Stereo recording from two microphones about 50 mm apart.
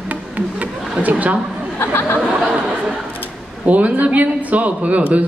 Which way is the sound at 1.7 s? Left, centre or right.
Left.